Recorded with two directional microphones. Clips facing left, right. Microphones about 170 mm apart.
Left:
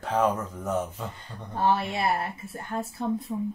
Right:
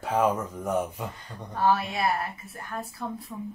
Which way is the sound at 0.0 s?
10° right (ahead or behind).